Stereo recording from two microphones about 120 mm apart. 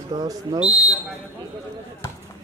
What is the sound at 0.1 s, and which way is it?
Speech, 40° right (ahead or behind).